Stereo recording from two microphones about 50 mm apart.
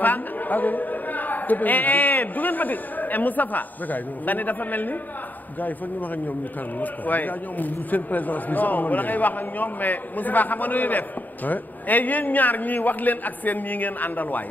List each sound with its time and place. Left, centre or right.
0.0 s a man's voice: left
6.8 s a man's voice: left